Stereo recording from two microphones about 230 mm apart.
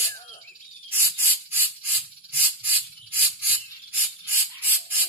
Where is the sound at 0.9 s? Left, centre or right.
Centre.